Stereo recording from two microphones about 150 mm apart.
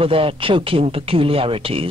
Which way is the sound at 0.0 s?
40° right (ahead or behind).